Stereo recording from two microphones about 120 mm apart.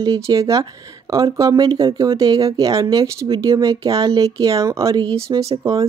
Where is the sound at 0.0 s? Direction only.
30° right (ahead or behind).